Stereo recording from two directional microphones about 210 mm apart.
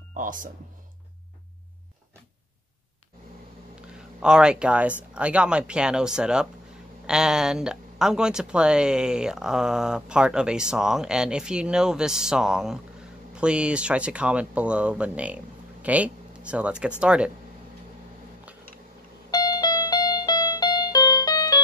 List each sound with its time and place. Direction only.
0.1 s speech: 40° right (ahead or behind)
4.2 s speech: 5° right (ahead or behind)
19.3 s music: 20° left (ahead or behind)